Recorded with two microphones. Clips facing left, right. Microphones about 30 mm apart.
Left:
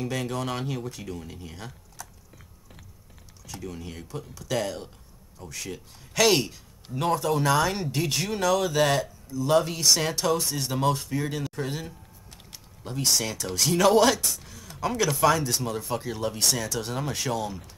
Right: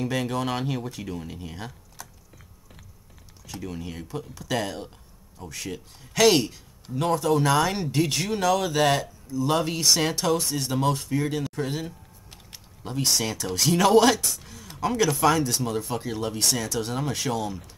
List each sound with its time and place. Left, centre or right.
0.0 s speech: centre
3.4 s a man's voice: centre
14.4 s a sound: centre
14.8 s a man's voice: centre